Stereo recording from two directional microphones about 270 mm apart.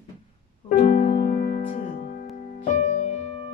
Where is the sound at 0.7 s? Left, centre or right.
Left.